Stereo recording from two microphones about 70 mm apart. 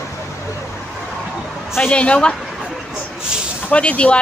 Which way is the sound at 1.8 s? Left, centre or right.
Centre.